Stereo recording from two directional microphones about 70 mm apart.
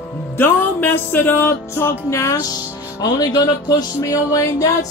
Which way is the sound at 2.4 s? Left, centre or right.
Left.